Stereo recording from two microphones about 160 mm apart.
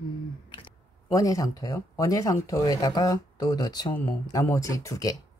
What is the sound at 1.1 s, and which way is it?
Speech, 20° left (ahead or behind).